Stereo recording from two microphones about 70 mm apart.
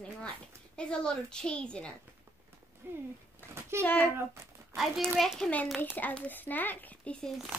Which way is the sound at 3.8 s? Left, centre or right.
Left.